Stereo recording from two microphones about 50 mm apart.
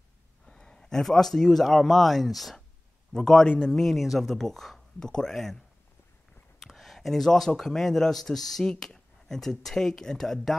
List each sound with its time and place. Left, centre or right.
0.5 s a man's voice: centre
3.8 s speech: centre
5.0 s speech: centre
6.6 s speech: centre